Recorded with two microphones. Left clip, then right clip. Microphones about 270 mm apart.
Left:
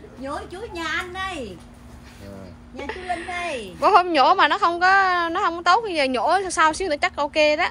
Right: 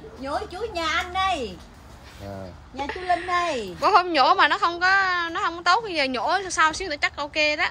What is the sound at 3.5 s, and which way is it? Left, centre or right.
Speech, right.